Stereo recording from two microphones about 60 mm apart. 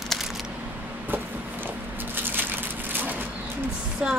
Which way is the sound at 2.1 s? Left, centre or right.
Right.